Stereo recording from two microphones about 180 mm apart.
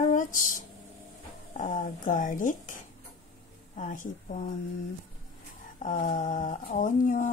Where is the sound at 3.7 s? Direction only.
45° left (ahead or behind).